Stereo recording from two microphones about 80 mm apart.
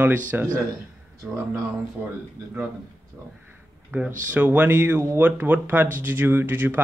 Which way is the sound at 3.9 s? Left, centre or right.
Right.